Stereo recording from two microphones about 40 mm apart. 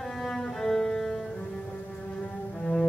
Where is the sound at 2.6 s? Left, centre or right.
Left.